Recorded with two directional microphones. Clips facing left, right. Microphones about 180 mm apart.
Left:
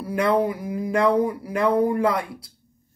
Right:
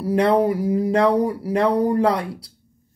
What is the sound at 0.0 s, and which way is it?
Speech, 35° right (ahead or behind).